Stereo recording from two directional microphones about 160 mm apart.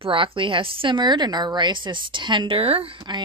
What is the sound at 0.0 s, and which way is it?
A woman's voice, 35° right (ahead or behind).